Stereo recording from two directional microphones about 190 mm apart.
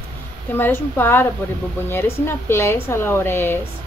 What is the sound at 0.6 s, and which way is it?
Speech, 10° left (ahead or behind).